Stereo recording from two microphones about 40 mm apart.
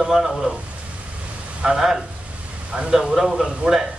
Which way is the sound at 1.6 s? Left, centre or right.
Centre.